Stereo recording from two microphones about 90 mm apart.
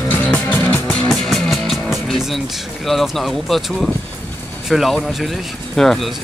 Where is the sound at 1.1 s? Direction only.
5° left (ahead or behind).